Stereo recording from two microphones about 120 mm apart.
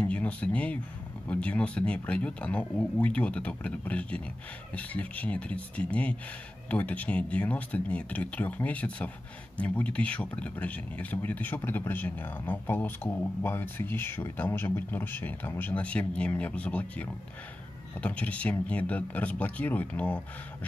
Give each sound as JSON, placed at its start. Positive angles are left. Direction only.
{"t": 0.0, "sound": "speech", "side_deg": 10}